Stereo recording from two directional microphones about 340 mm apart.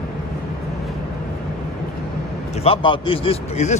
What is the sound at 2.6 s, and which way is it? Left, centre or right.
A man's voice, centre.